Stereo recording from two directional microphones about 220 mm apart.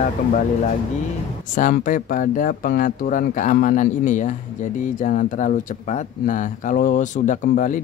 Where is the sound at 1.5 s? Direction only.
40° left (ahead or behind).